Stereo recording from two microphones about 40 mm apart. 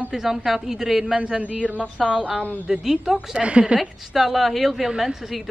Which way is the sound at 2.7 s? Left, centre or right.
Centre.